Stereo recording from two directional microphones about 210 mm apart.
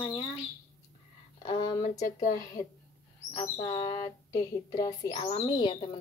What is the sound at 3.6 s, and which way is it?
Speech, 30° left (ahead or behind).